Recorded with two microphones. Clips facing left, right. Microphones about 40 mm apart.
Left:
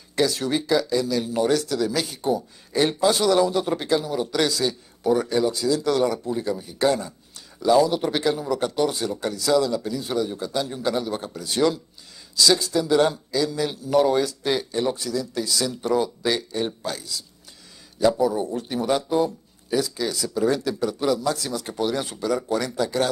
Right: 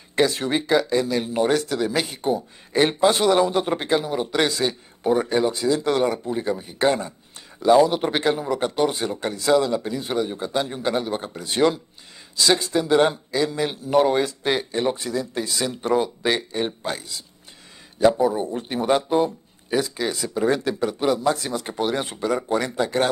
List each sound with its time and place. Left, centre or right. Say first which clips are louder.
0.1 s speech: right 2 dB; right